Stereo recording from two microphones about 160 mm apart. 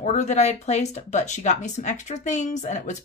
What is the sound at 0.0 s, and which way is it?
Speech, 45° left (ahead or behind).